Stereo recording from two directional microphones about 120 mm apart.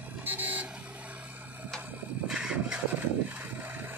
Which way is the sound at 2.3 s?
5° right (ahead or behind).